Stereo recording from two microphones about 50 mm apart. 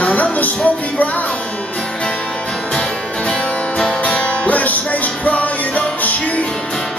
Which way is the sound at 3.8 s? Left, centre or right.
Centre.